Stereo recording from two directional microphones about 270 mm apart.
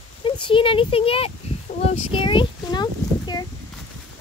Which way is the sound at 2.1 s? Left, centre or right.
Centre.